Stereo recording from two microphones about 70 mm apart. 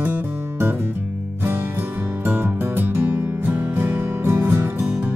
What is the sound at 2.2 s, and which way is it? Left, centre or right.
Music, right.